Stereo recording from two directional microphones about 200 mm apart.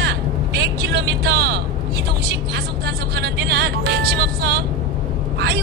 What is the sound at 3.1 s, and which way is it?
Vehicle, 55° right (ahead or behind).